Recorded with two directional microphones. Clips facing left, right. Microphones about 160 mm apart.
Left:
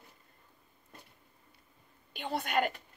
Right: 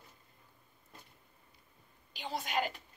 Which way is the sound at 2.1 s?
55° left (ahead or behind).